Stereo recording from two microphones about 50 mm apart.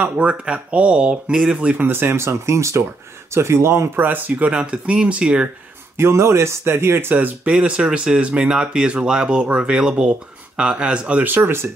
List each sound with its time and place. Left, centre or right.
0.0 s speech: right
1.9 s speech: right
4.4 s speech: right
5.9 s speech: right
7.4 s speech: right
11.2 s speech: right